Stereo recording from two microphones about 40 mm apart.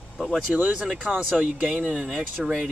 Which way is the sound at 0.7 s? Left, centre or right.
Centre.